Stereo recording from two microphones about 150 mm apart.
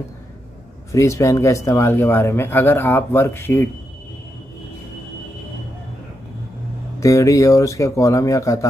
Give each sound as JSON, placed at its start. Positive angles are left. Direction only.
{"t": 0.9, "sound": "a man's voice", "side_deg": 20}
{"t": 7.0, "sound": "speech", "side_deg": 20}